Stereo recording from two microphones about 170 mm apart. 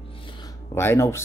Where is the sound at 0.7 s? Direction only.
15° left (ahead or behind).